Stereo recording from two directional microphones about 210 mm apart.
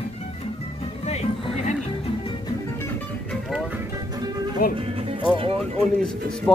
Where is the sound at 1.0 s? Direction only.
30° left (ahead or behind).